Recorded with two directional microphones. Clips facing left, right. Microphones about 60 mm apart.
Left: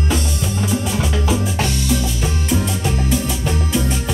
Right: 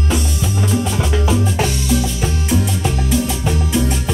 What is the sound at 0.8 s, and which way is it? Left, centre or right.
Music, centre.